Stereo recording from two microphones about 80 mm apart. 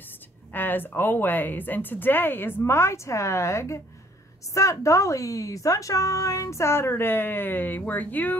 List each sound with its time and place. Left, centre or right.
0.5 s a woman's voice: left